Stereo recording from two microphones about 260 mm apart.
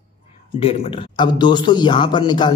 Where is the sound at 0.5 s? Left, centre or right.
Left.